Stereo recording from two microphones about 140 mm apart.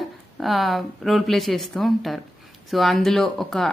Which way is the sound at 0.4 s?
Centre (ahead or behind).